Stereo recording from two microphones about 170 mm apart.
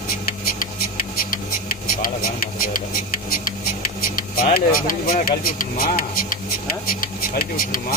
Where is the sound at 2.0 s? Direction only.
55° left (ahead or behind).